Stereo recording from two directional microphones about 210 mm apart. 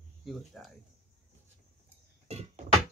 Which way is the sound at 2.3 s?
30° right (ahead or behind).